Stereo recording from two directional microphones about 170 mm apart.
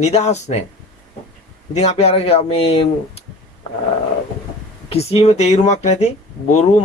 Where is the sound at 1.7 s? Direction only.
40° left (ahead or behind).